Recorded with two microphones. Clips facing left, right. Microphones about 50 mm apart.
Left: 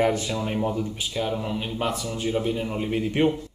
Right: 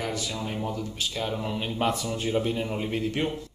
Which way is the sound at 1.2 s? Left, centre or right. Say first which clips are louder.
Left 4 dB; centre.